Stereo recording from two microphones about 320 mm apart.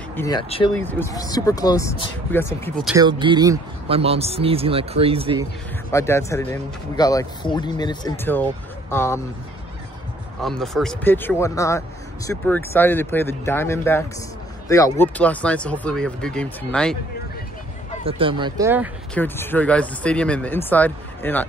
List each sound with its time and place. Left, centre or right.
0.1 s speech: centre
3.0 s speech: centre
5.9 s speech: centre
10.4 s speech: centre
18.0 s speech: centre
19.1 s speech: centre